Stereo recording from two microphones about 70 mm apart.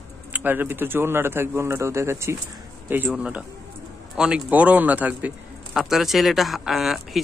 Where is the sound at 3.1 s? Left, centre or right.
Centre.